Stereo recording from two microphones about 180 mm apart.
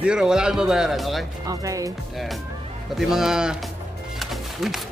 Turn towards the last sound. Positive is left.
turn(degrees=0)  # may be behind; listen again after turning